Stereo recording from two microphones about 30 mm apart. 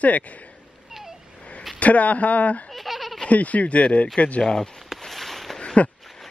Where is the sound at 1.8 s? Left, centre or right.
Left.